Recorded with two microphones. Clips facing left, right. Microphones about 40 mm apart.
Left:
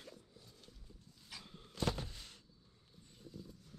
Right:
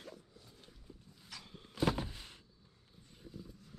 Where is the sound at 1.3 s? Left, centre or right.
Centre.